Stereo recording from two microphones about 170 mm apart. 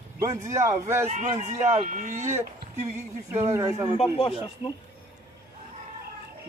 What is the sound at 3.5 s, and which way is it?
Speech, 15° right (ahead or behind).